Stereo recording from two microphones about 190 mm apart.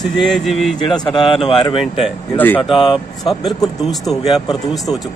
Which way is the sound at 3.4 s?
20° left (ahead or behind).